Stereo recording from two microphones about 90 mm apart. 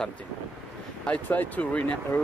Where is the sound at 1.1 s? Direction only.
20° left (ahead or behind).